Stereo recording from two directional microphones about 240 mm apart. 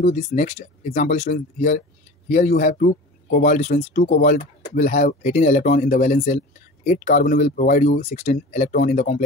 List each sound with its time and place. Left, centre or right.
0.0 s speech: left